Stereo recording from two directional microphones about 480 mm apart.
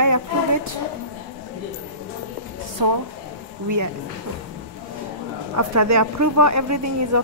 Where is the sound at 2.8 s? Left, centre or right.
Right.